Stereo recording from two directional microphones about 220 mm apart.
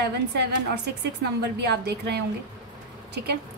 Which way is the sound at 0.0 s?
50° right (ahead or behind).